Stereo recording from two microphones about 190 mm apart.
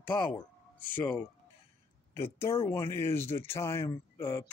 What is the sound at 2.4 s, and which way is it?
Speech, 30° left (ahead or behind).